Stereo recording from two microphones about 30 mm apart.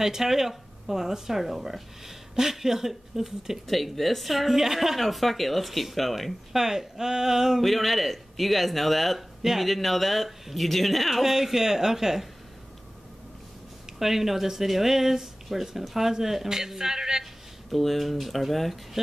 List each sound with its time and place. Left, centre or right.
0.0 s speech: centre
5.0 s speech: centre
6.5 s speech: centre
7.6 s speech: centre
11.3 s speech: centre
13.9 s speech: centre
17.2 s speech: centre